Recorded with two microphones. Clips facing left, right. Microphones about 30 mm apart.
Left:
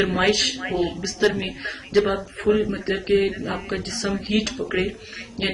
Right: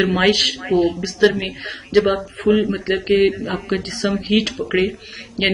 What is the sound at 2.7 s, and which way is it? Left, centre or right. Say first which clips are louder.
Speech: right 3 dB; right.